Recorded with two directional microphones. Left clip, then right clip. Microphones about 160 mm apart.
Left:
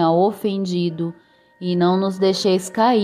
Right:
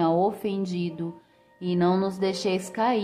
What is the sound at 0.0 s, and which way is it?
A woman's voice, 30° left (ahead or behind).